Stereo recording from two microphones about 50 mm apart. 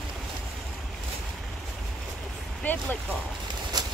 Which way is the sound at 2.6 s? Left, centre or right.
Left.